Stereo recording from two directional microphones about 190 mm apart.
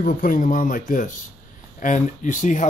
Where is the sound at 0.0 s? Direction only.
45° left (ahead or behind).